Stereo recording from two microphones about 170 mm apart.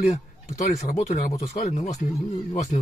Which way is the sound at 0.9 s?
40° left (ahead or behind).